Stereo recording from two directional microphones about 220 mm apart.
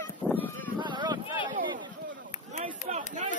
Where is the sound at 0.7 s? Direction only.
20° right (ahead or behind).